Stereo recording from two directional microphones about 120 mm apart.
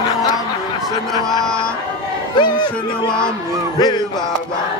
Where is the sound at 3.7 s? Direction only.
35° left (ahead or behind).